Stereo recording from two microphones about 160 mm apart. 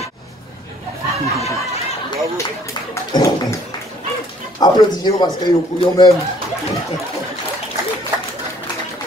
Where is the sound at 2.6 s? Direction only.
25° left (ahead or behind).